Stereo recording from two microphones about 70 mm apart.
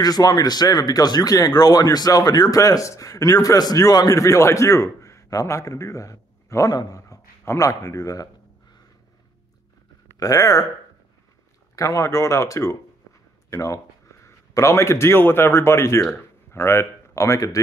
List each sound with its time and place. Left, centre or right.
0.0 s speech: left
6.7 s dog: left
7.1 s speech: left
10.1 s speech: left
11.7 s a man's voice: left